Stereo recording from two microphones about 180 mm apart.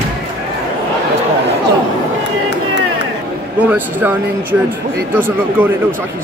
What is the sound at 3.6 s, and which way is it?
Speech, 10° right (ahead or behind).